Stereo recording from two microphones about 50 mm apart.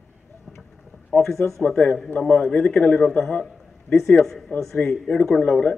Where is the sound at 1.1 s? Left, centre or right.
Left.